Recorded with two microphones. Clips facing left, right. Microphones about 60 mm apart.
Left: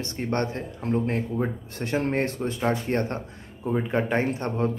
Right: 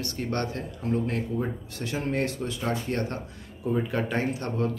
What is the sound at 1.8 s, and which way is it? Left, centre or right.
A man's voice, left.